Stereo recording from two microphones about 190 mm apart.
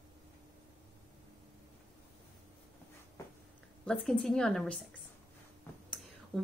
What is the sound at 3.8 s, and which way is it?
A woman's voice, 5° left (ahead or behind).